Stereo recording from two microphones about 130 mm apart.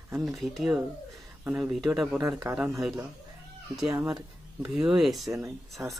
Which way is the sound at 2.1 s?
30° right (ahead or behind).